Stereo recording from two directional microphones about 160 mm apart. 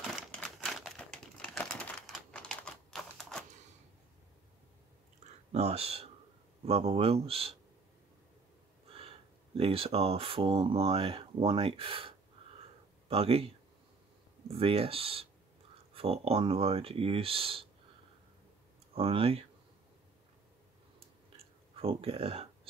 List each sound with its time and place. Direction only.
0.0 s typing: 5° left (ahead or behind)
5.2 s a sound: 45° right (ahead or behind)
6.6 s speech: 40° right (ahead or behind)
8.8 s speech: 35° right (ahead or behind)
13.1 s speech: 35° right (ahead or behind)
14.5 s speech: 35° right (ahead or behind)
18.9 s speech: 35° right (ahead or behind)
21.7 s speech: 35° right (ahead or behind)